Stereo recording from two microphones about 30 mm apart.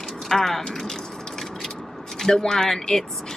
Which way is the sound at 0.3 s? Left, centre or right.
Centre.